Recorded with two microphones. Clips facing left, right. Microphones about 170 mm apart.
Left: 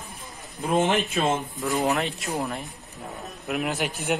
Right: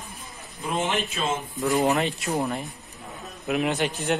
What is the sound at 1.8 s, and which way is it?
Speech, centre (ahead or behind).